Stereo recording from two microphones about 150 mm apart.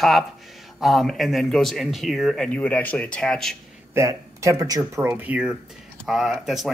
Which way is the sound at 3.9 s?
20° right (ahead or behind).